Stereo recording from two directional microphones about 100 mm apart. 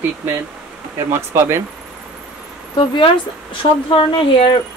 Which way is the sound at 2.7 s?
50° left (ahead or behind).